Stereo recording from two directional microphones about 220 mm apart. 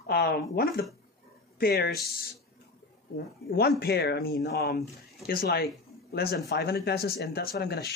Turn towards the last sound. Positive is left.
turn(degrees=45)  # may be behind; listen again after turning